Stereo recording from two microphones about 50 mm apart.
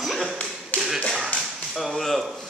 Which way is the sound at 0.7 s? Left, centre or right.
Left.